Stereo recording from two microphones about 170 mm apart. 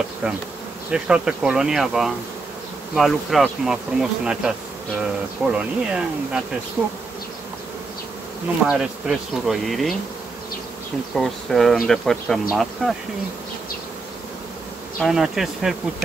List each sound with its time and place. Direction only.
0.9 s speech: 5° right (ahead or behind)
6.8 s bee: 10° right (ahead or behind)
8.6 s speech: 5° right (ahead or behind)
11.1 s speech: centre (ahead or behind)
15.0 s speech: centre (ahead or behind)